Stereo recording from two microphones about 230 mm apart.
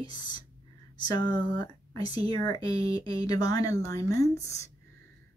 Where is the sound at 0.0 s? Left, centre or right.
Centre.